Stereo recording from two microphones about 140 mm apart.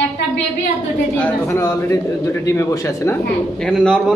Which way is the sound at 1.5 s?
20° left (ahead or behind).